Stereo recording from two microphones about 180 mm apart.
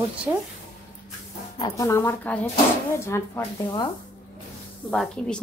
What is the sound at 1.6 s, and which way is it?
A woman's voice, 20° left (ahead or behind).